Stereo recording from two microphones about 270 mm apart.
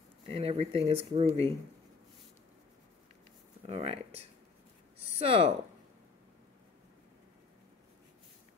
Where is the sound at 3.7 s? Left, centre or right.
Right.